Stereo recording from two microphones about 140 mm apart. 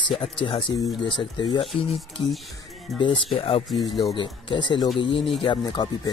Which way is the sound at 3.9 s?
35° left (ahead or behind).